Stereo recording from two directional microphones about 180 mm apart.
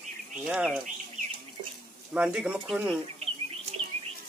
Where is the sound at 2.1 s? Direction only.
5° right (ahead or behind).